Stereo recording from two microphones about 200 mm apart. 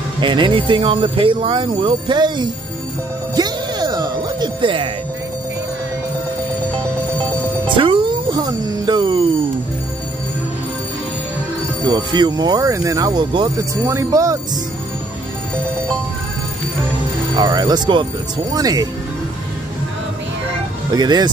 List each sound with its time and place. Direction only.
0.2 s speech: 25° right (ahead or behind)
3.3 s music: 20° right (ahead or behind)
7.6 s music: 25° right (ahead or behind)
11.8 s speech: 20° right (ahead or behind)
17.4 s speech: 20° right (ahead or behind)
20.9 s speech: 20° right (ahead or behind)